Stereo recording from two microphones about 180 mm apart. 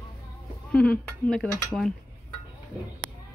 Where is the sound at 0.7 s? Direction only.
5° left (ahead or behind).